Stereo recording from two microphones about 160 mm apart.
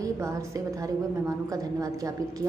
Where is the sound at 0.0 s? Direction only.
20° right (ahead or behind).